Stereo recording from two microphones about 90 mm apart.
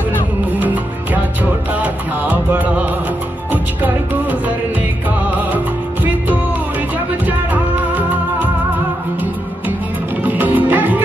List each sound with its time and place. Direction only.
0.6 s music: 20° right (ahead or behind)
10.2 s music: 20° right (ahead or behind)